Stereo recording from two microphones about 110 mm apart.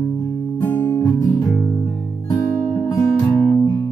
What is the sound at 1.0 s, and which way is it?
Guitar, 30° left (ahead or behind).